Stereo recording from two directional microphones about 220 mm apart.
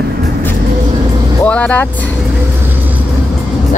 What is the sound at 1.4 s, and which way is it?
Speech, 5° left (ahead or behind).